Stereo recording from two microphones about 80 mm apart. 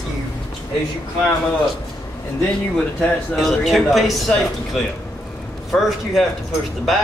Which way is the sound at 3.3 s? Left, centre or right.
Centre.